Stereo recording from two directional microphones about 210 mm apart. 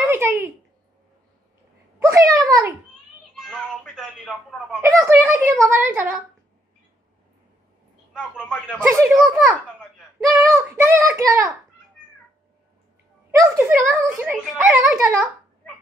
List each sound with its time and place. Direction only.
0.0 s a sound: 10° right (ahead or behind)
2.0 s a sound: 15° right (ahead or behind)
3.3 s a woman's voice: centre (ahead or behind)
8.4 s a woman's voice: 5° left (ahead or behind)
10.3 s a child's voice: 15° right (ahead or behind)
13.3 s a child's voice: 15° right (ahead or behind)